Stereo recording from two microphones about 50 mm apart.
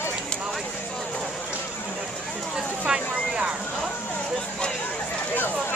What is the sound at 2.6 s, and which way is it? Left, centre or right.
Vehicle, centre.